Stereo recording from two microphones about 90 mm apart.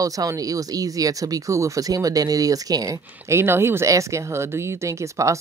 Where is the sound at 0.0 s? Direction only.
40° right (ahead or behind).